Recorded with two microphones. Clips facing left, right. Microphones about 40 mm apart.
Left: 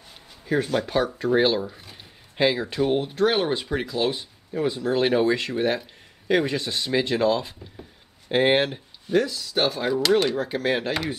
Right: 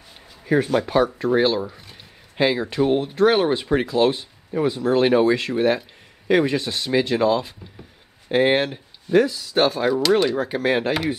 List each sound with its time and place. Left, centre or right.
0.5 s speech: centre
4.0 s speech: centre
4.5 s speech: right
4.8 s speech: centre
9.1 s speech: centre